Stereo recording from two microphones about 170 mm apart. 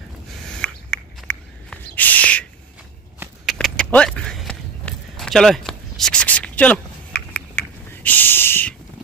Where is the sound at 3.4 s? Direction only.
5° left (ahead or behind).